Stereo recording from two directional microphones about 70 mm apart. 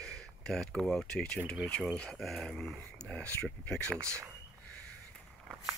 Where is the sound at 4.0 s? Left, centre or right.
Right.